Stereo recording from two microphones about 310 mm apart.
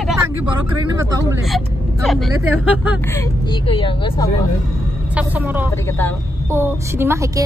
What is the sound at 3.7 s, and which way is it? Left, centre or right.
Speech, centre.